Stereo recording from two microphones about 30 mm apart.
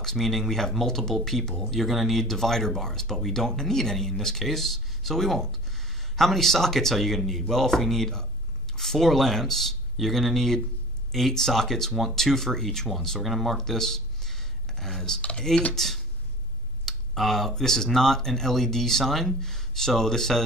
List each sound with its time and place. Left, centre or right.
0.0 s speech: centre
13.6 s a sound: centre
15.3 s speech: left
15.7 s speech: centre